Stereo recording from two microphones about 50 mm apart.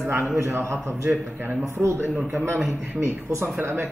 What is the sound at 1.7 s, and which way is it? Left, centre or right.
A man's voice, right.